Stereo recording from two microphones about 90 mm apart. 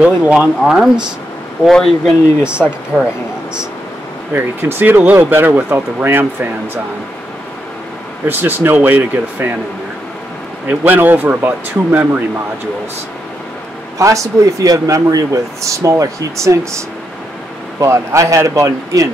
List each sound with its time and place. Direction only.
0.0 s speech: 10° right (ahead or behind); by 2.1 s 5° left (ahead or behind)
2.4 s speech: 10° right (ahead or behind)
4.3 s speech: 25° right (ahead or behind)
8.3 s speech: 25° right (ahead or behind)
10.7 s speech: 20° right (ahead or behind)
13.9 s speech: 35° right (ahead or behind)